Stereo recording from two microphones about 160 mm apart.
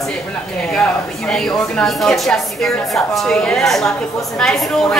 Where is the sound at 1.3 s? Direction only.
5° left (ahead or behind).